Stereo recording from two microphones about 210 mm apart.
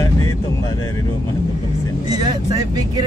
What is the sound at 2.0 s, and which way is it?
Speech, 20° right (ahead or behind).